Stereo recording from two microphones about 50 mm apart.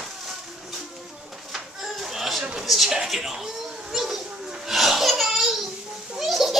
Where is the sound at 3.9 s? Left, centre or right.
Centre.